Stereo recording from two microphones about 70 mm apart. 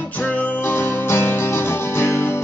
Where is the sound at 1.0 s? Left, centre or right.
Left.